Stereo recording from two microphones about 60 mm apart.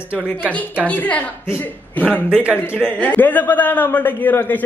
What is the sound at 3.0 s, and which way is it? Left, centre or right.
A man's voice, left.